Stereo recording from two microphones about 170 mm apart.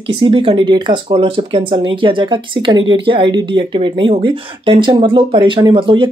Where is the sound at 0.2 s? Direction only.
30° right (ahead or behind).